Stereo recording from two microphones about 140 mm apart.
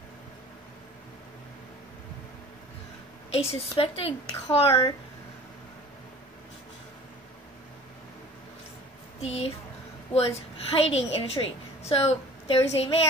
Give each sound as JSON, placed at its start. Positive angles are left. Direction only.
{"t": 3.3, "sound": "a woman's voice", "side_deg": 45}
{"t": 9.2, "sound": "a woman's voice", "side_deg": 45}